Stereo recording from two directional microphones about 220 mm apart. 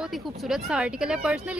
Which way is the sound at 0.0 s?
Centre (ahead or behind).